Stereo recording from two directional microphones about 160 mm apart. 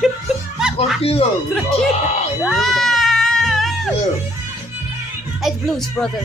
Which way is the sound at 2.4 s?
Centre (ahead or behind).